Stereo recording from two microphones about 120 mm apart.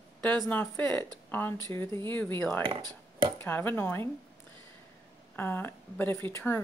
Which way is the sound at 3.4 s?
15° left (ahead or behind).